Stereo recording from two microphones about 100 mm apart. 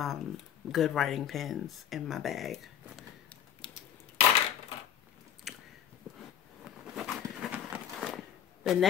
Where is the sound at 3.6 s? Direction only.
55° left (ahead or behind).